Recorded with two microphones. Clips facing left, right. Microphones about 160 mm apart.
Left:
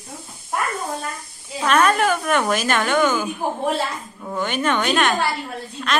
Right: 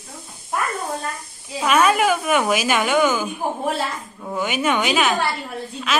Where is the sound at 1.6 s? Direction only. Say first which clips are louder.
Even; 10° right (ahead or behind).